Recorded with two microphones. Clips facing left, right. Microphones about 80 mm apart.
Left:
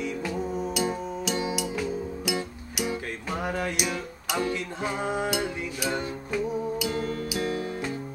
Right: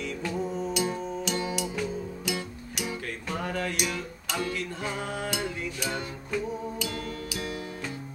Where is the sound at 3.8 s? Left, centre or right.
Centre; by 7.9 s left.